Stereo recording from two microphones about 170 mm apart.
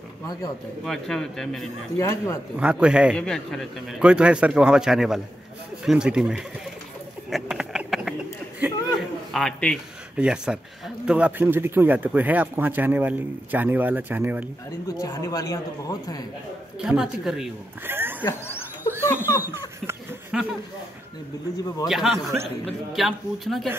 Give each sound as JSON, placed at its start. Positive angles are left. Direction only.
{"t": 0.8, "sound": "a man's voice", "side_deg": 5}
{"t": 2.0, "sound": "a man's voice", "side_deg": 15}
{"t": 2.5, "sound": "a man's voice", "side_deg": -5}
{"t": 7.2, "sound": "a sound", "side_deg": 0}
{"t": 9.3, "sound": "a man's voice", "side_deg": 5}
{"t": 15.0, "sound": "speech", "side_deg": 20}
{"t": 16.8, "sound": "a man's voice", "side_deg": -5}
{"t": 17.8, "sound": "oink", "side_deg": -15}
{"t": 18.9, "sound": "laughter", "side_deg": 15}
{"t": 19.9, "sound": "a sound", "side_deg": -5}
{"t": 21.8, "sound": "a man's voice", "side_deg": 0}